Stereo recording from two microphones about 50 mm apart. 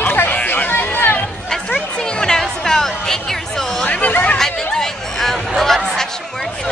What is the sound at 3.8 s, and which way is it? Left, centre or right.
Chatter, left.